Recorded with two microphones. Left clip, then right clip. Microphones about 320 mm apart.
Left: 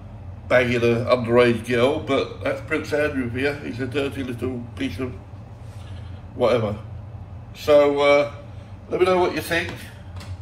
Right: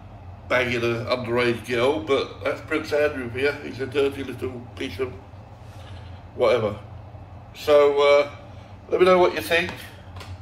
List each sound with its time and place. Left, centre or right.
0.5 s a man's voice: centre
6.3 s a man's voice: centre